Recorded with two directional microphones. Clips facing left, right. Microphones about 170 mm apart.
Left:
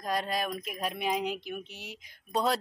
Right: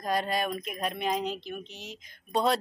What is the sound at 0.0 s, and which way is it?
Speech, centre (ahead or behind).